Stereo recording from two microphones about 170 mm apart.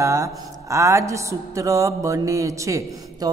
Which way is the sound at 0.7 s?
20° right (ahead or behind).